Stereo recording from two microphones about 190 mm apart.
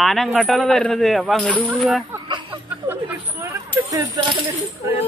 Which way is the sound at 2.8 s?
10° right (ahead or behind).